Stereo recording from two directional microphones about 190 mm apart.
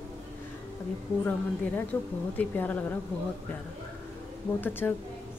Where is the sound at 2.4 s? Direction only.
10° left (ahead or behind).